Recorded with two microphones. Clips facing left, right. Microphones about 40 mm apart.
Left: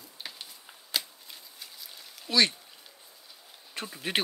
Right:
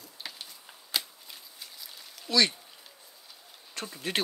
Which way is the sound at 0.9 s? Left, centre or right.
Centre.